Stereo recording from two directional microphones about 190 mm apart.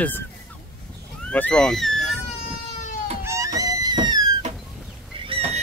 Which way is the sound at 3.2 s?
15° right (ahead or behind).